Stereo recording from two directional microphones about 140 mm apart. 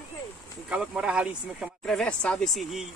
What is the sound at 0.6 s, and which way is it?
Speech, 5° right (ahead or behind).